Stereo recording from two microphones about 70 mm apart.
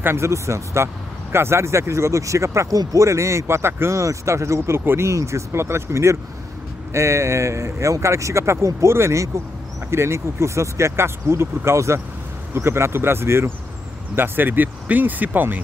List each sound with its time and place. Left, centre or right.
0.0 s speech: right